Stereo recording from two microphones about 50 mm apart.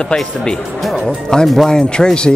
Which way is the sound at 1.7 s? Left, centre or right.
Centre.